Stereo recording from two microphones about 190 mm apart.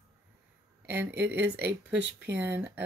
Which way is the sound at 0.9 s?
10° right (ahead or behind).